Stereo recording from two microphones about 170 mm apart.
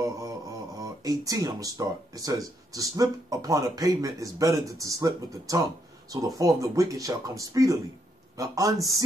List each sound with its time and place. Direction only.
0.0 s speech: 20° right (ahead or behind)